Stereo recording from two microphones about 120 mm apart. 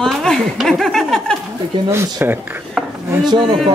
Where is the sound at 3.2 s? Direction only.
35° right (ahead or behind).